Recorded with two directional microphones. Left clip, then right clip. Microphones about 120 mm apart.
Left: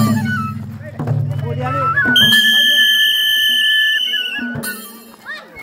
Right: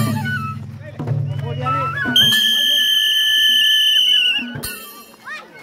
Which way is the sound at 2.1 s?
15° left (ahead or behind).